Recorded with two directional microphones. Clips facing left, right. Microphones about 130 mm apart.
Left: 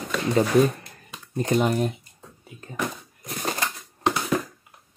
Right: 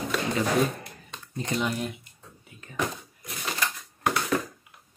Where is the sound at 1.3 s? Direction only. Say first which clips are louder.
Left 7 dB; 50° left (ahead or behind).